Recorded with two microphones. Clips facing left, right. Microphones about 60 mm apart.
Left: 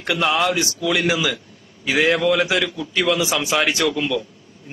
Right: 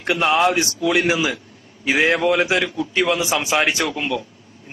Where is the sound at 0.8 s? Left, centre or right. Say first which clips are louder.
Right 1 dB; right.